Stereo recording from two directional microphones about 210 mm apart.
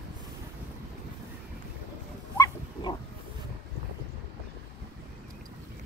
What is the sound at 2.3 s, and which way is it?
Dog, 15° left (ahead or behind).